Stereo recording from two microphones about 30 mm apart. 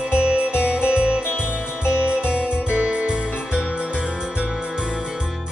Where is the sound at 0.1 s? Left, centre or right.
Right.